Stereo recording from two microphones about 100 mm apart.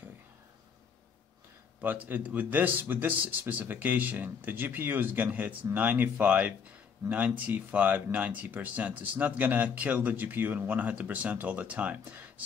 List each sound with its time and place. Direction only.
1.8 s speech: 20° right (ahead or behind)